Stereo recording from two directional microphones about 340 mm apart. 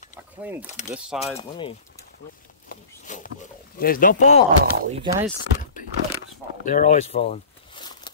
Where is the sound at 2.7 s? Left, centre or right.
Left.